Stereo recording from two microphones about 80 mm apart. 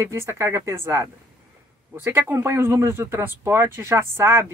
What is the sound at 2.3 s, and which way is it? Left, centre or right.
Speech, right.